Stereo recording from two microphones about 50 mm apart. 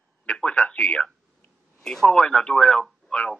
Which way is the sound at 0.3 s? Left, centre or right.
Centre.